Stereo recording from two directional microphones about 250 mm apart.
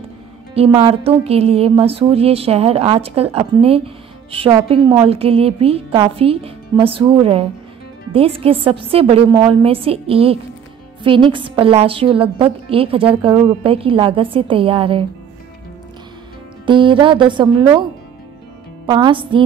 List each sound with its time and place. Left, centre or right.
0.7 s a woman's voice: right
16.6 s a woman's voice: centre
18.9 s a woman's voice: centre